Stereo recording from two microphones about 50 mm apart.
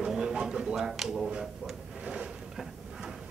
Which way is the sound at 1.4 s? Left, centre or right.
Centre.